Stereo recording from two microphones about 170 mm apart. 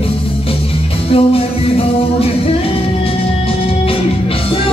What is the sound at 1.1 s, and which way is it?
Music, 35° left (ahead or behind).